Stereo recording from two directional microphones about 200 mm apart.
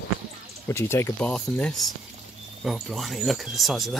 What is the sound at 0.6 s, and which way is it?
Speech, 15° left (ahead or behind).